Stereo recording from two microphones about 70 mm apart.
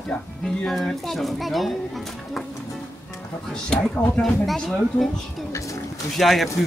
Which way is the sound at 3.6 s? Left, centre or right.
Centre.